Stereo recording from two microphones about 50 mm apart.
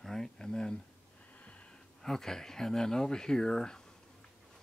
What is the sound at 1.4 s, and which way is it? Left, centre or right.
Wheeze, left.